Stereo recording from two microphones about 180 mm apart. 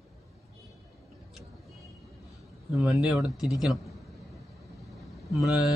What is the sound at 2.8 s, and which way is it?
Speech, 5° right (ahead or behind).